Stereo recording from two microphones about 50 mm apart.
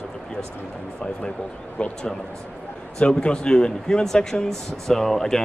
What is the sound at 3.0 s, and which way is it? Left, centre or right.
Speech, left.